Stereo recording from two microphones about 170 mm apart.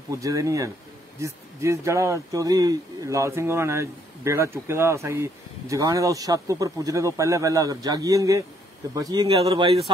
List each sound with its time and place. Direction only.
0.1 s speech: 20° right (ahead or behind)
9.4 s speech: 35° right (ahead or behind)